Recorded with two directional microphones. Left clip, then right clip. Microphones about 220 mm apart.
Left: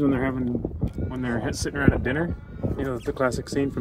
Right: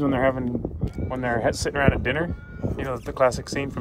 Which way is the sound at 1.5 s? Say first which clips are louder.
Right 1 dB; 25° right (ahead or behind).